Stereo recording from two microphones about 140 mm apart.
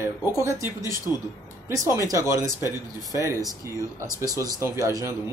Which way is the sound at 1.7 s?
25° right (ahead or behind).